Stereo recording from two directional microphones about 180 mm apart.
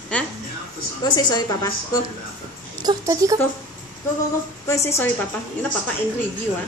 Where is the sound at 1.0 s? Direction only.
25° left (ahead or behind).